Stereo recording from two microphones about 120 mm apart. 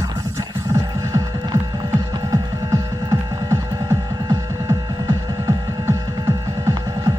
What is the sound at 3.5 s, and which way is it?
Music, 20° right (ahead or behind).